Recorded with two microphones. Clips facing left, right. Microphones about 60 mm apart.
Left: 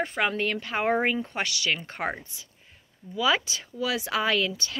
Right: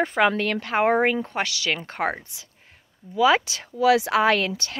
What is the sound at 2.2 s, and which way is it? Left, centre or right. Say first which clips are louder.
Speech: even; right.